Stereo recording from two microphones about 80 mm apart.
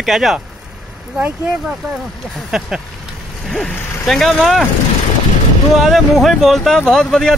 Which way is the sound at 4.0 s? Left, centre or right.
Centre.